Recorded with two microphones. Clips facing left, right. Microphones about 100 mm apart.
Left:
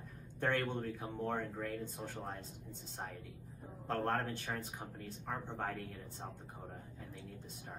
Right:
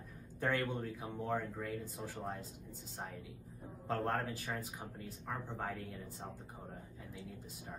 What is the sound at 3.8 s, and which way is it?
Speech, centre (ahead or behind).